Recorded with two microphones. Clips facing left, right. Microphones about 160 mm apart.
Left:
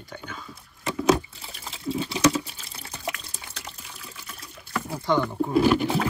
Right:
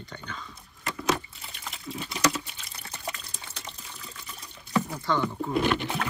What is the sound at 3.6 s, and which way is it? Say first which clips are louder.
Water: left 1 dB; 5° left (ahead or behind).